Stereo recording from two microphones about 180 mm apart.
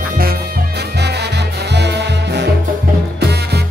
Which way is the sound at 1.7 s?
70° right (ahead or behind).